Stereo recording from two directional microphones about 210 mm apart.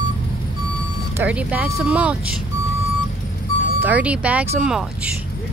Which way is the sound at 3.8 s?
5° right (ahead or behind).